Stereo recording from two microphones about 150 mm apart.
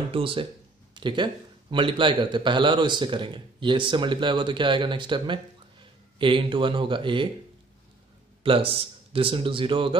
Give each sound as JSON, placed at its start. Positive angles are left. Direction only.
{"t": 0.1, "sound": "a man's voice", "side_deg": -35}
{"t": 8.5, "sound": "a man's voice", "side_deg": -35}